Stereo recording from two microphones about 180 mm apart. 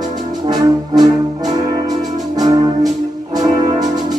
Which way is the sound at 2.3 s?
20° right (ahead or behind).